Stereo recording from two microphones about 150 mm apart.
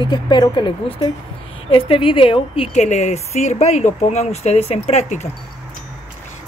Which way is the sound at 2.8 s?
50° left (ahead or behind).